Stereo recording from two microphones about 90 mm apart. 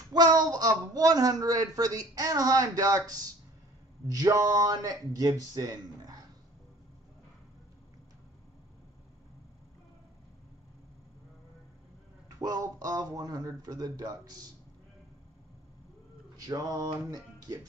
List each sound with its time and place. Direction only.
0.1 s a woman's voice: 45° right (ahead or behind)
12.4 s a woman's voice: 45° right (ahead or behind)
16.3 s a sound: 40° right (ahead or behind)